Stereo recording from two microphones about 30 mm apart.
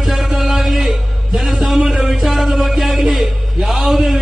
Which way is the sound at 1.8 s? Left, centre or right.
Centre.